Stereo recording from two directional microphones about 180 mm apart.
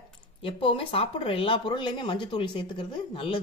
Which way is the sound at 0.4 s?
30° left (ahead or behind).